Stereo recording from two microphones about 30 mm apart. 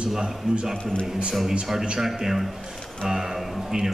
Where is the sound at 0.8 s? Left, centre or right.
Left.